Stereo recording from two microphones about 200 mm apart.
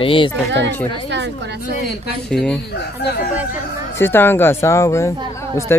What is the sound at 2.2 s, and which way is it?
Speech, 5° left (ahead or behind).